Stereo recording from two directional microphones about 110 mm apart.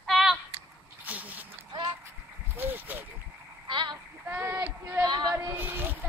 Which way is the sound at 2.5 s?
15° right (ahead or behind).